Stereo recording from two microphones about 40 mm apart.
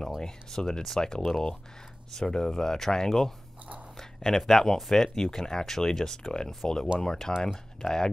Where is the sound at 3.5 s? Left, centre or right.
Right.